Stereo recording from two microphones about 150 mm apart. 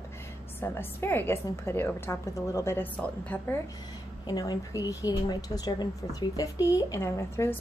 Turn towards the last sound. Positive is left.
turn(degrees=15)  # may be behind; listen again after turning